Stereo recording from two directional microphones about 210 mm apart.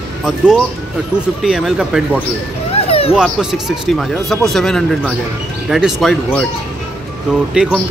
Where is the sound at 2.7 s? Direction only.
30° left (ahead or behind).